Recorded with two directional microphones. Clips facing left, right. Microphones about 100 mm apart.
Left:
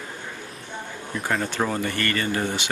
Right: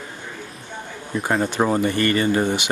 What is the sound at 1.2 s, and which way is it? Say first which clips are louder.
Speech: right 5 dB; 30° right (ahead or behind).